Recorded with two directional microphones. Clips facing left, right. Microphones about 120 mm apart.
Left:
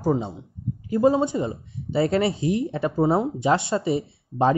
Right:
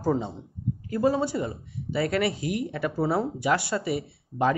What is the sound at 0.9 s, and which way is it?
Speech, 20° left (ahead or behind).